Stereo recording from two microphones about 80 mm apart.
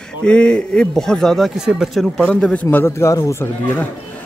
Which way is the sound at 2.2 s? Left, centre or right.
Centre.